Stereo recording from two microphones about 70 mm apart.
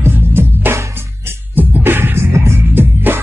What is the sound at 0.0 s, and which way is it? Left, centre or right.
Music, right.